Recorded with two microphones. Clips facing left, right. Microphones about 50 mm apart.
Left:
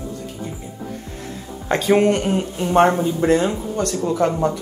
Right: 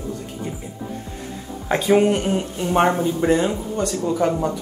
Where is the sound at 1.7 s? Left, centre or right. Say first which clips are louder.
Left 1 dB; centre.